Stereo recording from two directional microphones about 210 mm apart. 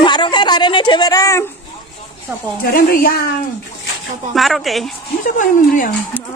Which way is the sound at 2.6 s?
45° left (ahead or behind).